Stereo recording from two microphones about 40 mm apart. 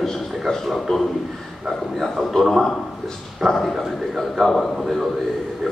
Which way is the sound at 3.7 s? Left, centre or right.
Centre.